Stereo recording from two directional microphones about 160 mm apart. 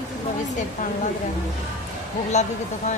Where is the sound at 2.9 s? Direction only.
45° left (ahead or behind).